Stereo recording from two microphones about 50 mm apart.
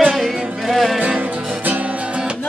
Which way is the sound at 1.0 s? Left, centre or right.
Right.